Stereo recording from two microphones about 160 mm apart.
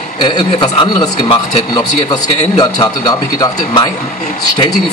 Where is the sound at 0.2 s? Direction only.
30° left (ahead or behind).